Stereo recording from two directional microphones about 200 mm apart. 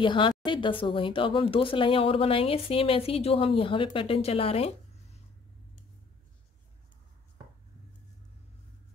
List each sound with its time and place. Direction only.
0.0 s speech: 25° left (ahead or behind)